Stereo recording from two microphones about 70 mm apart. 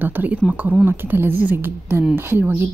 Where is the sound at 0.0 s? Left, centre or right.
Right.